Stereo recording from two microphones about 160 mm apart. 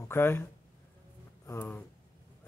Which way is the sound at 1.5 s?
15° left (ahead or behind).